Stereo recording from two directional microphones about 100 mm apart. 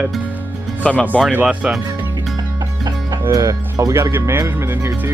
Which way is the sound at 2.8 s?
35° right (ahead or behind).